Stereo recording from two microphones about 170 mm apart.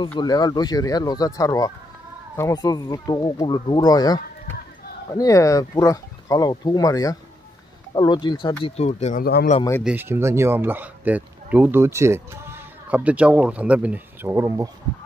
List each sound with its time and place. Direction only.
0.0 s speech: 25° left (ahead or behind)
8.6 s speech: 40° left (ahead or behind)
9.2 s speech: 65° left (ahead or behind)
9.8 s speech: 10° right (ahead or behind)